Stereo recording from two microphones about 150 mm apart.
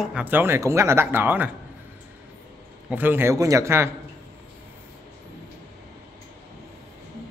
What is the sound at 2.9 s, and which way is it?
Speech, 15° right (ahead or behind).